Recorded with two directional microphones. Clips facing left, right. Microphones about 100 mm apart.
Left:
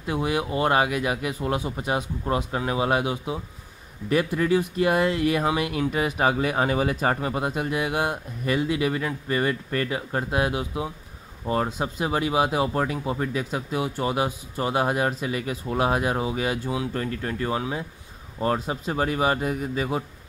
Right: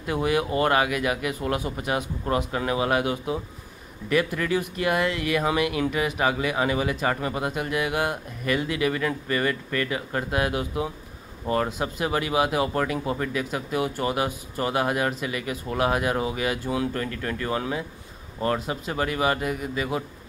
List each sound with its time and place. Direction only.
0.0 s speech: 20° left (ahead or behind)
7.2 s speech: 25° left (ahead or behind)
18.6 s speech: 30° left (ahead or behind)